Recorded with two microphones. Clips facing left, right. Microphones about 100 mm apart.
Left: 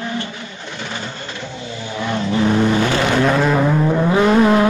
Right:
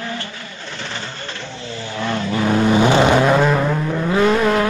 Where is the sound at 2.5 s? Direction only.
15° right (ahead or behind).